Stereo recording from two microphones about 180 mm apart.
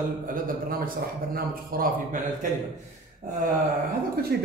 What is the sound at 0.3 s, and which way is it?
A man's voice, 50° right (ahead or behind).